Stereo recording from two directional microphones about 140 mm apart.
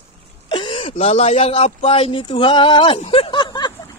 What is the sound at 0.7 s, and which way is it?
Speech, 45° left (ahead or behind).